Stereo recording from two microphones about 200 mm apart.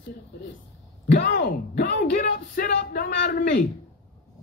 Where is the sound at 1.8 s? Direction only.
40° left (ahead or behind).